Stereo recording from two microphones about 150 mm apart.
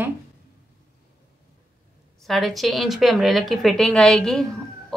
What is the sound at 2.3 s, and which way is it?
A woman's voice, centre (ahead or behind).